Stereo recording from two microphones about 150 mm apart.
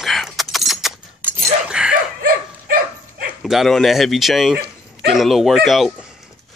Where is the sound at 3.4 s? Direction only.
Centre (ahead or behind).